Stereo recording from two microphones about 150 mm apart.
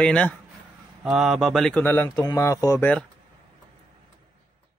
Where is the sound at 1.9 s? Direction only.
15° left (ahead or behind).